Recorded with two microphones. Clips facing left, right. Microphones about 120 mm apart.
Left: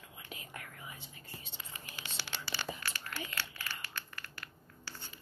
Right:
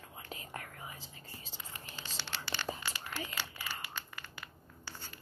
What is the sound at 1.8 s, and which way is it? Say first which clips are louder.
Scratch: even; 10° left (ahead or behind).